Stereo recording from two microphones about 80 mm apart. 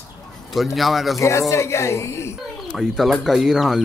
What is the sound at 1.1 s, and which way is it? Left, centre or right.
A woman's voice, left.